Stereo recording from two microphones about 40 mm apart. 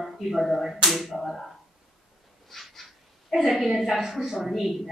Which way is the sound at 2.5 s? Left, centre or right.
Centre.